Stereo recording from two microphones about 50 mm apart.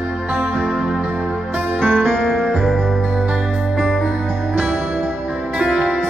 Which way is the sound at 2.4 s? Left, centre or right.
Centre.